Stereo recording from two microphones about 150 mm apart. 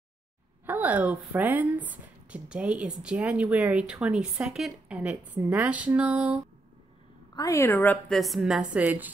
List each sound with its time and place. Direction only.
0.7 s speech: 10° right (ahead or behind)
7.3 s speech: 20° left (ahead or behind)
8.2 s a woman's voice: centre (ahead or behind)